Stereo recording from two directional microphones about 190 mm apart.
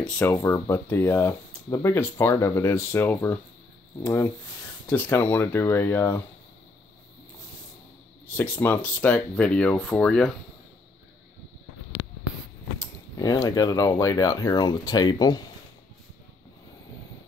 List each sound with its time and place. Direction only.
0.0 s speech: 10° left (ahead or behind)
8.4 s speech: 10° left (ahead or behind)
12.8 s speech: 15° left (ahead or behind)